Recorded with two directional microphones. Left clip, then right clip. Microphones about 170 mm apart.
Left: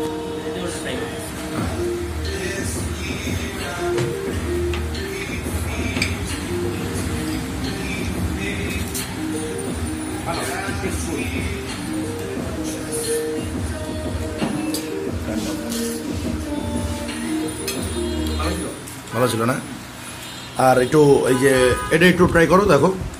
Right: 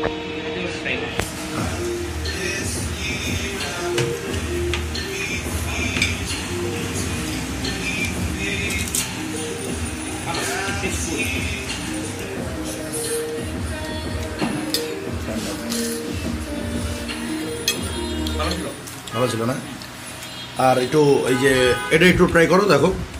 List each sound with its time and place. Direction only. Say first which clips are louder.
19.1 s a sound: left 2 dB; 5° left (ahead or behind)
20.5 s speech: left 2 dB; 15° left (ahead or behind)
21.2 s speech: left 1 dB; 5° left (ahead or behind)